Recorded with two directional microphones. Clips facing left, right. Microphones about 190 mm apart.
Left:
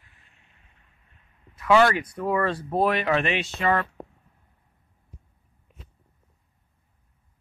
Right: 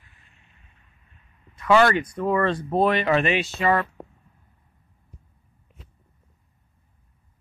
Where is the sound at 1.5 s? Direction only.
5° left (ahead or behind).